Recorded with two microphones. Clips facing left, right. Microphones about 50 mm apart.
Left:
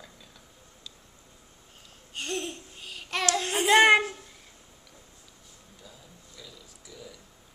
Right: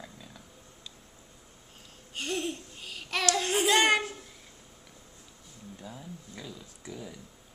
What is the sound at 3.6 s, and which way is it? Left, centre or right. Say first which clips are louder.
Speech: left 7 dB; left.